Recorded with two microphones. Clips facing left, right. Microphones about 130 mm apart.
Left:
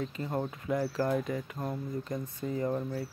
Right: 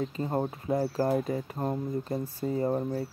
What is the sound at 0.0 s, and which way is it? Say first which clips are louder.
Speech: right 4 dB; 30° right (ahead or behind).